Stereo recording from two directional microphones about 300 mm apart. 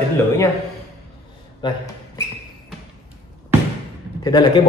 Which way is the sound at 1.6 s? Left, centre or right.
Centre.